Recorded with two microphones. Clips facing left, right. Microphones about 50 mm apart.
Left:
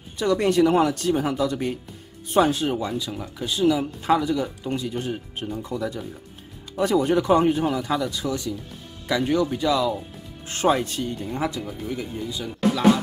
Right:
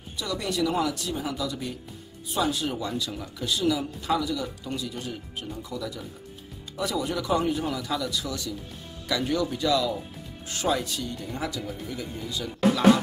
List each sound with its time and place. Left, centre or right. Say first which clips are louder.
0.2 s speech: left 9 dB; left
2.9 s speech: left 3 dB; centre
10.5 s speech: left 6 dB; left
12.5 s speech: left 1 dB; centre